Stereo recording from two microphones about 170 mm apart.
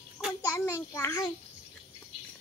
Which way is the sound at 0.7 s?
15° left (ahead or behind).